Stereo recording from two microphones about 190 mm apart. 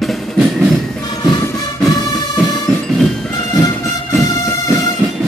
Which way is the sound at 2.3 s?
Centre (ahead or behind).